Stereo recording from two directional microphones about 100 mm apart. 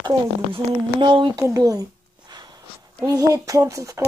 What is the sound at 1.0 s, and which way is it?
Speech, 50° right (ahead or behind).